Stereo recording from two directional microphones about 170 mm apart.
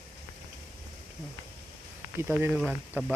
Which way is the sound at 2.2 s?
15° right (ahead or behind).